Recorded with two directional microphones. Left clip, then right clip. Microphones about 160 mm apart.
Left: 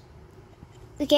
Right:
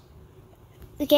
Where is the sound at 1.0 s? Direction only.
Centre (ahead or behind).